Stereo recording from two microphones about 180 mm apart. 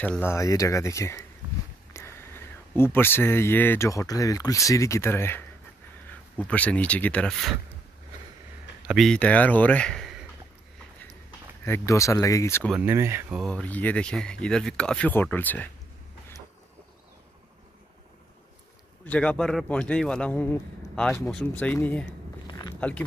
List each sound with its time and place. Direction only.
0.0 s speech: 10° left (ahead or behind)
8.8 s a man's voice: centre (ahead or behind)
11.6 s speech: 15° left (ahead or behind)
12.7 s speech: 15° right (ahead or behind)
13.4 s speech: 5° left (ahead or behind)
19.0 s speech: 5° left (ahead or behind)